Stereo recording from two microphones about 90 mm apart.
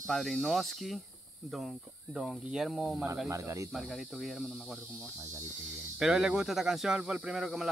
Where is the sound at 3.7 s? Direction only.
Centre (ahead or behind).